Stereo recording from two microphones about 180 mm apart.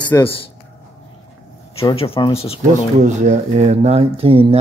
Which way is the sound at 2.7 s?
40° right (ahead or behind).